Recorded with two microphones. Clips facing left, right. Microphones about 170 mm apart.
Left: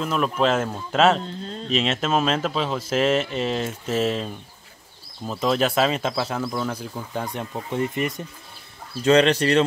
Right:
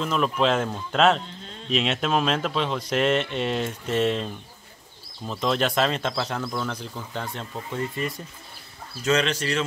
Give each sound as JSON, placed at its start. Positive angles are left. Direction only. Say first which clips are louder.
{"t": 0.0, "sound": "speech", "louder": "left 1 dB", "side_deg": 5}
{"t": 1.2, "sound": "a sound", "louder": "left 8 dB", "side_deg": 35}
{"t": 1.7, "sound": "speech", "louder": "left 1 dB", "side_deg": 0}
{"t": 9.0, "sound": "speech", "louder": "left 7 dB", "side_deg": 30}